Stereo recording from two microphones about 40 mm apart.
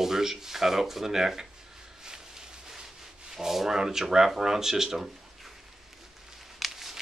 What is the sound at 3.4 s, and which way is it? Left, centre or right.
Speech, centre.